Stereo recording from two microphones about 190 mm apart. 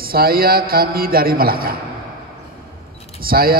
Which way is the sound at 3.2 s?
50° right (ahead or behind).